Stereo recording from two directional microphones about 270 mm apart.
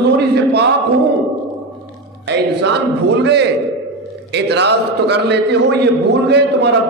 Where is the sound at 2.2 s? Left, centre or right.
Right.